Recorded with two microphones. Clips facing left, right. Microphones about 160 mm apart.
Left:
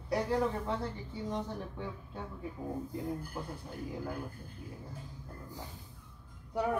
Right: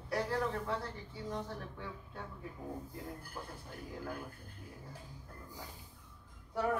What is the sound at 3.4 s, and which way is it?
Speech, 20° left (ahead or behind).